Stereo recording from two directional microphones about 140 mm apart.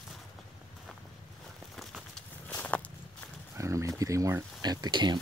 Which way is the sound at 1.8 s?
5° left (ahead or behind).